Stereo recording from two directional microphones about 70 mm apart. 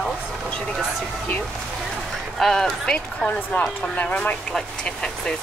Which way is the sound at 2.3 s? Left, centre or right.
Centre.